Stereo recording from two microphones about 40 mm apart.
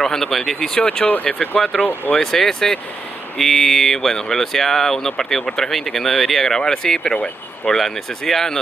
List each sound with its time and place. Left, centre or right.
0.0 s speech: centre
0.7 s speech: left
2.3 s speech: centre